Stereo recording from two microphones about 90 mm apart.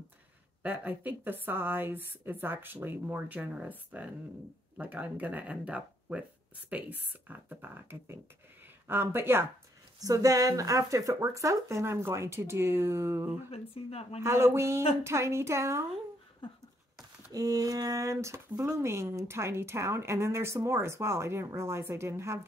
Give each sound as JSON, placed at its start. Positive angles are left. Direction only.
{"t": 0.6, "sound": "speech", "side_deg": -20}
{"t": 9.9, "sound": "a woman's voice", "side_deg": -40}
{"t": 17.3, "sound": "a woman's voice", "side_deg": -40}